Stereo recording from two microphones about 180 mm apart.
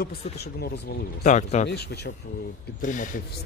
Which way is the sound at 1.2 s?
40° left (ahead or behind).